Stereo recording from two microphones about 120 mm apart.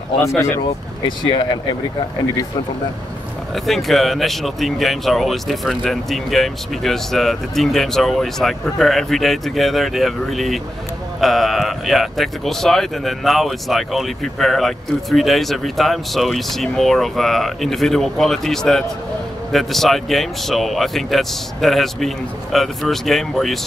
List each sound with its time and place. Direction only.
1.0 s speech: 40° left (ahead or behind)
3.5 s speech: centre (ahead or behind)